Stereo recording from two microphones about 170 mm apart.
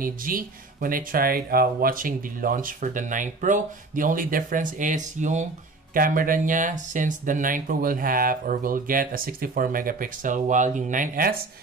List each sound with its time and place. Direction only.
0.0 s speech: 55° right (ahead or behind)